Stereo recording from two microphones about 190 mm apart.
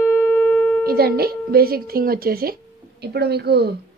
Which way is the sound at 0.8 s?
55° right (ahead or behind).